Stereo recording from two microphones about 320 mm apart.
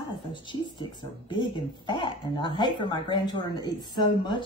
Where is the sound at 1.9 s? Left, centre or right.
Centre.